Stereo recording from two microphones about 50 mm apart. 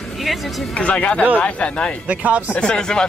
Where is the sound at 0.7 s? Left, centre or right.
Left.